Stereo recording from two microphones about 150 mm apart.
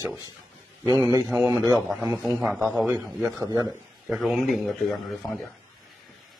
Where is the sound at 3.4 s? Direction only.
20° right (ahead or behind).